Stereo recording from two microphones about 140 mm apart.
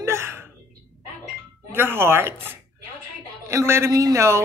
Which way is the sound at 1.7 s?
15° right (ahead or behind).